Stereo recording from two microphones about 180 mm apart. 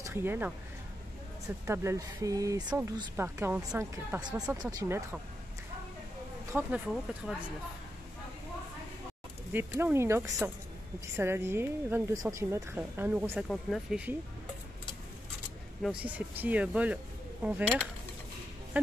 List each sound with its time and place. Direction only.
0.0 s speech: 15° right (ahead or behind)
1.7 s speech: 15° right (ahead or behind)
6.5 s speech: 5° right (ahead or behind)
9.5 s speech: 10° right (ahead or behind)
15.8 s speech: 5° right (ahead or behind)